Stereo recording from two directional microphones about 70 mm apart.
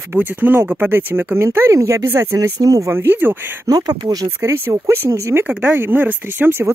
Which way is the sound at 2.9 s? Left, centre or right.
Right.